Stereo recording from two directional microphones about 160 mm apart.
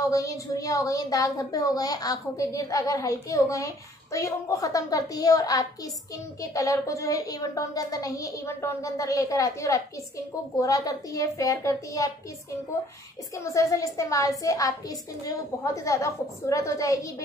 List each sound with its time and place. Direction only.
0.0 s a woman's voice: 20° left (ahead or behind)
13.4 s a woman's voice: 20° left (ahead or behind)